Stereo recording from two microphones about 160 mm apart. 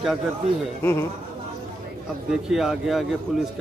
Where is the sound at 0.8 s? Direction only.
15° left (ahead or behind).